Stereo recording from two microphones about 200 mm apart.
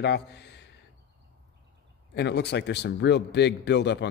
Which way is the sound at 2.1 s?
60° left (ahead or behind).